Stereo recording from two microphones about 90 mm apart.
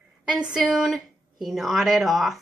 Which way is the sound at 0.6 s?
Centre (ahead or behind).